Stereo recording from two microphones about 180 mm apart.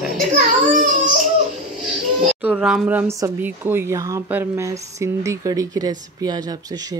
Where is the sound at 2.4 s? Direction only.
5° right (ahead or behind).